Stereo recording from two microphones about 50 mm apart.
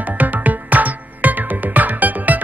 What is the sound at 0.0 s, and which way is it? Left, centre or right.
Music, right.